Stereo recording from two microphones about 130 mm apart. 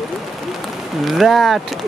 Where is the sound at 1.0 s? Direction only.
Centre (ahead or behind).